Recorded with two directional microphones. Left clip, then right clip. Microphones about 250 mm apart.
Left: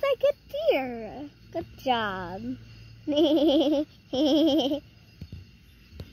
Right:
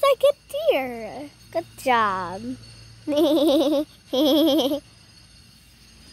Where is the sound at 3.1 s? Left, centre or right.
Right.